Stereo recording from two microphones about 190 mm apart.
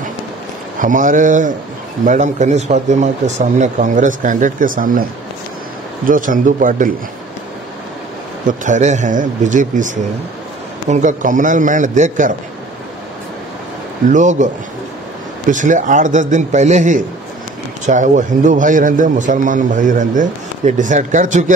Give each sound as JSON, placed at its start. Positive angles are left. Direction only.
{"t": 0.7, "sound": "speech", "side_deg": -45}
{"t": 6.0, "sound": "speech", "side_deg": -45}
{"t": 8.5, "sound": "a man's voice", "side_deg": -40}
{"t": 14.1, "sound": "a man's voice", "side_deg": -40}
{"t": 15.5, "sound": "a man's voice", "side_deg": -40}